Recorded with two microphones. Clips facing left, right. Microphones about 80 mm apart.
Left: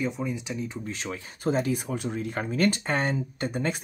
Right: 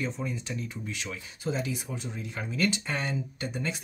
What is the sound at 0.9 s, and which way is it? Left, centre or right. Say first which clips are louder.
Speech: left 3 dB; left.